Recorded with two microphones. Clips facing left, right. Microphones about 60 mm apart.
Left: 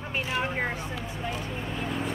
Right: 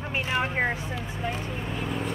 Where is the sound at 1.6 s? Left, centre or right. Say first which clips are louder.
Even; centre.